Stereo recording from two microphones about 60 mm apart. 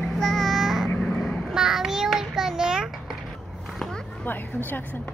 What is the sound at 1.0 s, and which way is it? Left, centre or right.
Vehicle, centre.